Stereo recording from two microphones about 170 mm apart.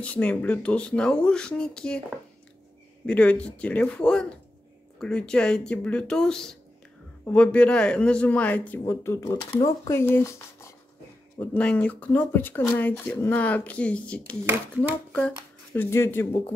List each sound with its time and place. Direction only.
0.0 s speech: 10° left (ahead or behind)
3.1 s speech: 5° left (ahead or behind)